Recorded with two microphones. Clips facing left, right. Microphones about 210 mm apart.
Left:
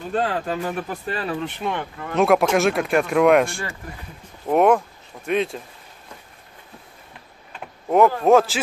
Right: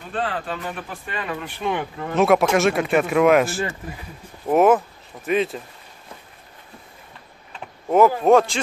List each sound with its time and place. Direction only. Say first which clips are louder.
0.1 s speech: left 3 dB; 40° left (ahead or behind)
1.6 s speech: right 2 dB; 5° right (ahead or behind)
8.2 s speech: even; centre (ahead or behind)